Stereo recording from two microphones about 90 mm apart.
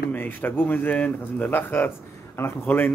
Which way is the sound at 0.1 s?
20° left (ahead or behind).